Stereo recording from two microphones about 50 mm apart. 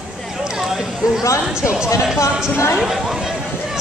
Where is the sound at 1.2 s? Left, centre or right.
Left.